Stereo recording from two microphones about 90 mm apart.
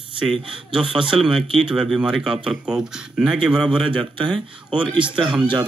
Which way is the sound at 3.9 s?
65° right (ahead or behind).